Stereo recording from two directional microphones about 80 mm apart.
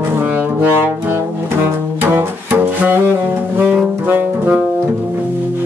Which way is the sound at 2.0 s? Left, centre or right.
Right.